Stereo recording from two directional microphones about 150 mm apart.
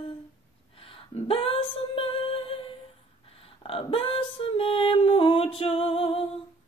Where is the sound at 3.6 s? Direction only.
40° left (ahead or behind).